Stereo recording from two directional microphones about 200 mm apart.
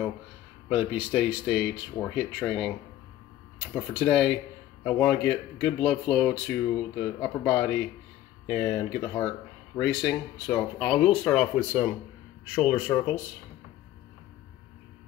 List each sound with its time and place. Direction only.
0.7 s speech: 5° right (ahead or behind)